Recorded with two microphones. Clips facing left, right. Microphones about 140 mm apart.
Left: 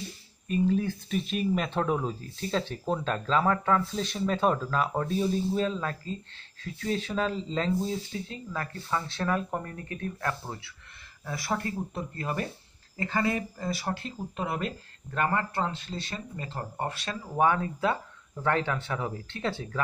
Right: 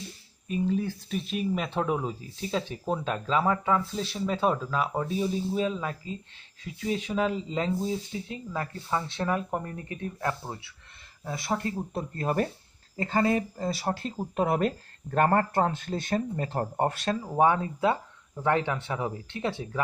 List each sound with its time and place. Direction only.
0.5 s speech: 5° right (ahead or behind); by 11.7 s 20° right (ahead or behind)
11.9 s speech: 35° right (ahead or behind)
17.2 s speech: 25° right (ahead or behind)